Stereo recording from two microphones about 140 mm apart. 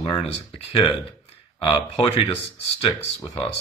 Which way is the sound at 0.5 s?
45° left (ahead or behind).